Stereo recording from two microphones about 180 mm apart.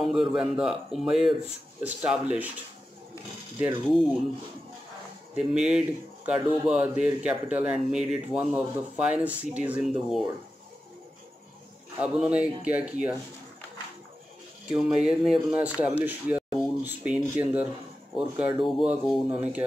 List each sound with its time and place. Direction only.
0.0 s a man's voice: centre (ahead or behind)
3.6 s a man's voice: centre (ahead or behind)
5.3 s speech: 5° right (ahead or behind)
12.0 s speech: 5° right (ahead or behind)
15.0 s a man's voice: 5° right (ahead or behind)
16.5 s a sound: 5° right (ahead or behind)
18.1 s a man's voice: 5° right (ahead or behind)